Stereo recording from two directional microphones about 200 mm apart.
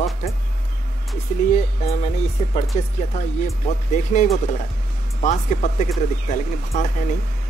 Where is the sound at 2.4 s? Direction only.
30° left (ahead or behind).